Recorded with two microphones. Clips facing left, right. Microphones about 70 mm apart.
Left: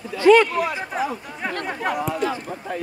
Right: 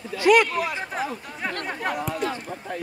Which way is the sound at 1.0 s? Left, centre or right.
Centre.